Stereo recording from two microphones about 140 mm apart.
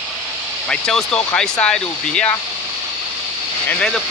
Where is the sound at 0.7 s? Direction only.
5° left (ahead or behind).